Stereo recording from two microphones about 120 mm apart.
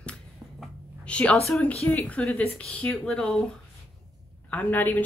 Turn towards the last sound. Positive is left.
turn(degrees=15)  # may be behind; listen again after turning